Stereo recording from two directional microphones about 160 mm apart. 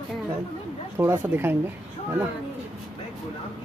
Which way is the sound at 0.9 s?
15° right (ahead or behind).